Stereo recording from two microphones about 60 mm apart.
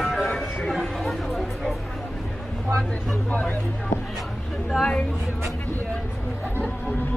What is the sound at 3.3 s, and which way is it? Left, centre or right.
Speech, left.